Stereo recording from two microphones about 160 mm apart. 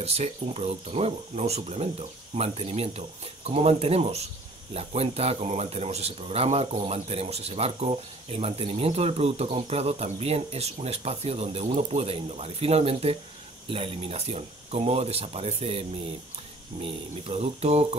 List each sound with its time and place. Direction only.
0.0 s speech: 40° right (ahead or behind)
16.8 s speech: 35° right (ahead or behind)